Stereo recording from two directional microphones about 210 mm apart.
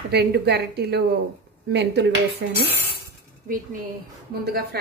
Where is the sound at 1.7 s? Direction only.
55° right (ahead or behind).